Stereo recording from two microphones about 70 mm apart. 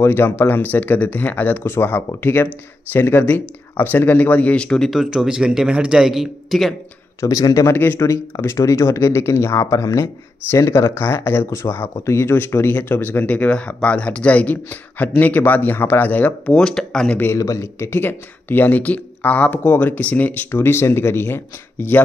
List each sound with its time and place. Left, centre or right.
0.0 s speech: left; by 5.0 s centre
5.0 s speech: centre
7.2 s speech: left
7.7 s speech: left
8.4 s speech: left
16.5 s speech: centre
17.3 s speech: left